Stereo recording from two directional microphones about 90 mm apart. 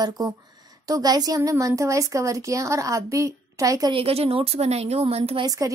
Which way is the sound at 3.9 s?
90° right.